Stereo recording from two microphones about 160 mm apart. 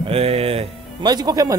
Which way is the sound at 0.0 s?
40° right (ahead or behind).